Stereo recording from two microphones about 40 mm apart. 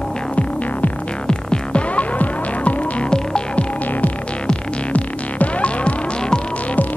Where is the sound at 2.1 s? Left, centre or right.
Left.